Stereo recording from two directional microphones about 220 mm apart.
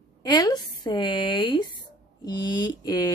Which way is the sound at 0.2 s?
20° left (ahead or behind).